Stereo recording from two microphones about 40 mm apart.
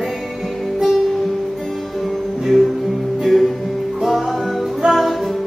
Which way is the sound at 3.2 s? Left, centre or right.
Centre.